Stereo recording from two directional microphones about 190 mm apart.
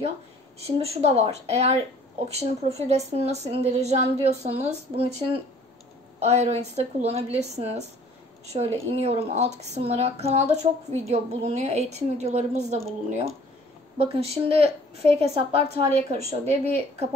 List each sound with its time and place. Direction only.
0.7 s speech: 35° right (ahead or behind)
6.1 s speech: 35° right (ahead or behind)